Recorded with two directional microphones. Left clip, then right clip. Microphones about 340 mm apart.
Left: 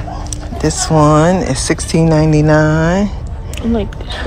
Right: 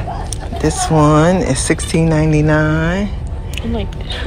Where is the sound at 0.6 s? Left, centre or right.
Centre.